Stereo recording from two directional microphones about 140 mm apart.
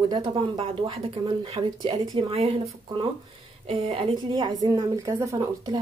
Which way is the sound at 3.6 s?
40° right (ahead or behind).